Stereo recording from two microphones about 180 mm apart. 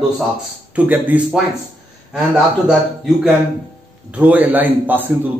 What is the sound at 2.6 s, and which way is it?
A man's voice, 5° right (ahead or behind).